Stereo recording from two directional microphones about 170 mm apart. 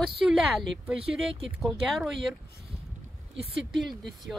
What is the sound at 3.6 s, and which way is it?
Speech, centre (ahead or behind).